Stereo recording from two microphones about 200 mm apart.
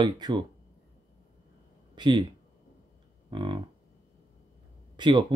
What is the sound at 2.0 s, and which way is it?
Speech, 20° right (ahead or behind).